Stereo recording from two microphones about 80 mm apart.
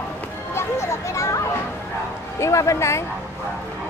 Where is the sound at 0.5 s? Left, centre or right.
Left.